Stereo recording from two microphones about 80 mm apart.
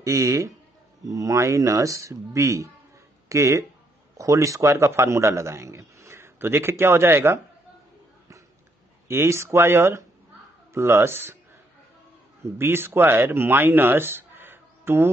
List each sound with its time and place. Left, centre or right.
0.0 s a man's voice: right
9.0 s a man's voice: right
12.4 s speech: right